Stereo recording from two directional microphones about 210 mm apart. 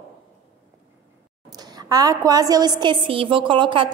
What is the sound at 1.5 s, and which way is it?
A woman's voice, 20° right (ahead or behind).